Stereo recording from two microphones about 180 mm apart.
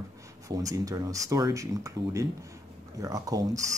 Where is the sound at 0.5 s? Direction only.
20° right (ahead or behind).